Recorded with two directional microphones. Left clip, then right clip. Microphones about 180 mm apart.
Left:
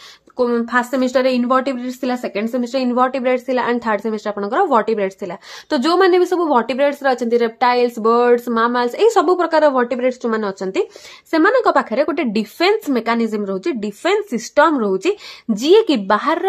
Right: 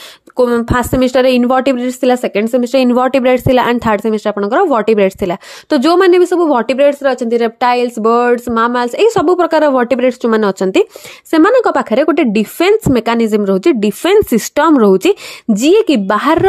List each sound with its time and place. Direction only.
0.4 s speech: 55° right (ahead or behind)
5.7 s speech: 35° right (ahead or behind)